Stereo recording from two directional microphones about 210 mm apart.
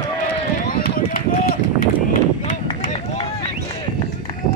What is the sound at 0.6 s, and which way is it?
Run, 45° left (ahead or behind).